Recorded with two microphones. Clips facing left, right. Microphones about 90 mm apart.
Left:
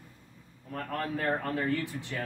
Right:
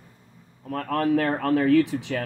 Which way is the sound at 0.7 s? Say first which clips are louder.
Right 11 dB; 80° right.